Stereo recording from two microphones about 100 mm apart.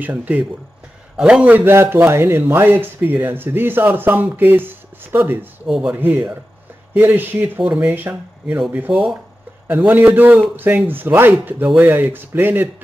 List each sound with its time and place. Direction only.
0.0 s a man's voice: 15° right (ahead or behind)